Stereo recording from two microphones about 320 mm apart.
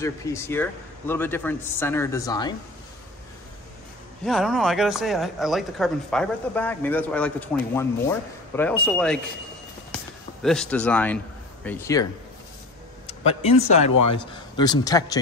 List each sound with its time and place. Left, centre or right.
0.0 s a man's voice: centre
4.2 s speech: centre
10.4 s a man's voice: centre
13.2 s a man's voice: centre